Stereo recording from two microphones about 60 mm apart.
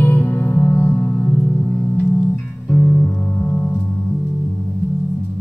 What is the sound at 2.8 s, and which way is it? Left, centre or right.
Music, centre.